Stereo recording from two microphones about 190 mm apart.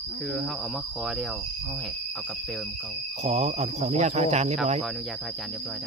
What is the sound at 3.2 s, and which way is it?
Speech, 35° right (ahead or behind).